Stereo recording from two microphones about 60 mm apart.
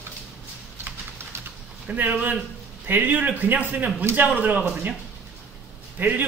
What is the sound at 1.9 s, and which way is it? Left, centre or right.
A man's voice, right.